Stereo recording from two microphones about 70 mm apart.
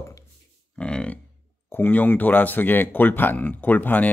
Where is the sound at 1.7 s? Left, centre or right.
Left.